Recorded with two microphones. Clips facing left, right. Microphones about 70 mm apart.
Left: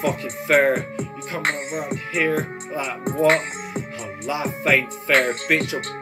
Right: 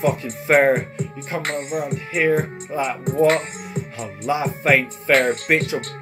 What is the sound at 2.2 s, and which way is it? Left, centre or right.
Speech, right.